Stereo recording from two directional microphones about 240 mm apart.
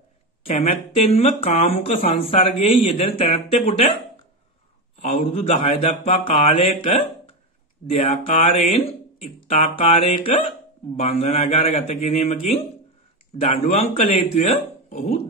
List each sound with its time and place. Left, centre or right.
0.5 s mantra: left
5.0 s mantra: left
13.4 s mantra: left